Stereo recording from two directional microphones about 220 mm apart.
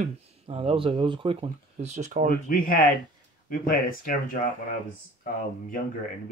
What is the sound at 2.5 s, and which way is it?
Speech, 40° left (ahead or behind).